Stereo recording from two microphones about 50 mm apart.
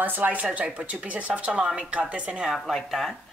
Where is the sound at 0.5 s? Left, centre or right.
Right.